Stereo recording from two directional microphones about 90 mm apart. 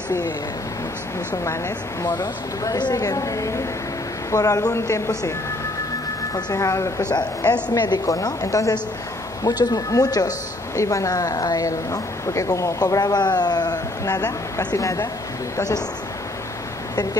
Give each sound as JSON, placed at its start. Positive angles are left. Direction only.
{"t": 1.3, "sound": "a woman's voice", "side_deg": 35}
{"t": 6.3, "sound": "a woman's voice", "side_deg": 40}
{"t": 7.7, "sound": "a woman's voice", "side_deg": 50}
{"t": 9.4, "sound": "a woman's voice", "side_deg": 50}
{"t": 16.9, "sound": "speech", "side_deg": 45}